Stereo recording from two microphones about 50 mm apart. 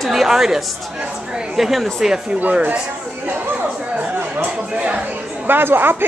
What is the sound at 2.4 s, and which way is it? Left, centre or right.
Speech, right.